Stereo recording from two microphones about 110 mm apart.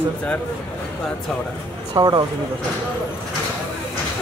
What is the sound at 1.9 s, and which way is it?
Speech, 35° right (ahead or behind).